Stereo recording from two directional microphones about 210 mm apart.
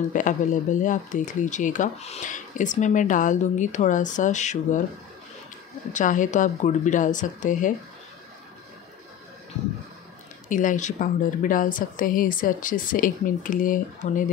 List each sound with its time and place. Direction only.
0.1 s speech: 35° left (ahead or behind)
5.9 s speech: 35° left (ahead or behind)
10.5 s speech: 40° left (ahead or behind)